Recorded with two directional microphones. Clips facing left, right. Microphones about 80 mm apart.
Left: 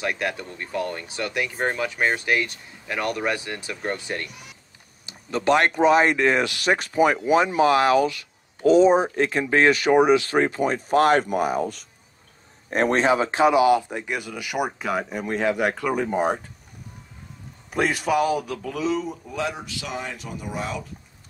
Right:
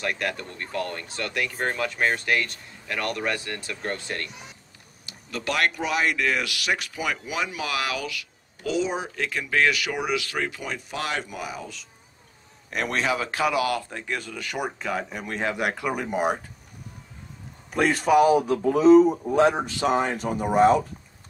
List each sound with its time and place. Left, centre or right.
0.0 s speech: centre
4.3 s speech: right
5.0 s speech: left
12.6 s speech: left; by 16.1 s centre
18.2 s speech: right